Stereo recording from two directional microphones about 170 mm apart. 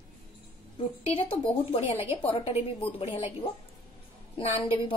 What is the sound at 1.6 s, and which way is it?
A woman's voice, 35° left (ahead or behind).